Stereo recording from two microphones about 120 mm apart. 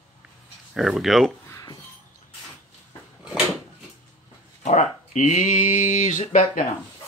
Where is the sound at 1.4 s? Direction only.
25° left (ahead or behind).